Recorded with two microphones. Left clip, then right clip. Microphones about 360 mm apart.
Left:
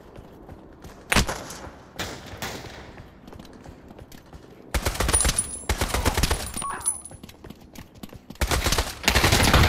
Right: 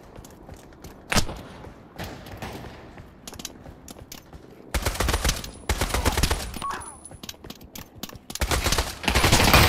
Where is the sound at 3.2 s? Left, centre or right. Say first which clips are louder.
Right 9 dB; right.